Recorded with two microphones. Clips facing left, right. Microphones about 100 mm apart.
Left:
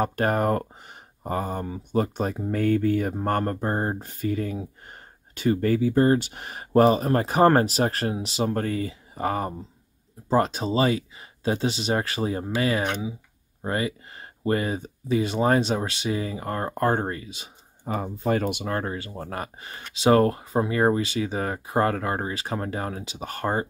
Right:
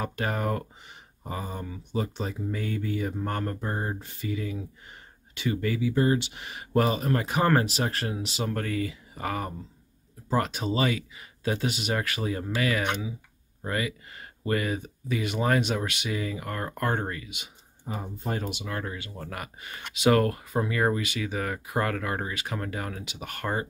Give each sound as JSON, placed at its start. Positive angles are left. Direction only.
{"t": 0.0, "sound": "speech", "side_deg": 50}
{"t": 17.8, "sound": "speech", "side_deg": 85}
{"t": 18.5, "sound": "speech", "side_deg": 55}
{"t": 18.8, "sound": "speech", "side_deg": 35}